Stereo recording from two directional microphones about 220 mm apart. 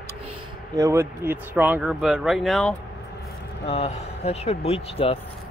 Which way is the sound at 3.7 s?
30° left (ahead or behind).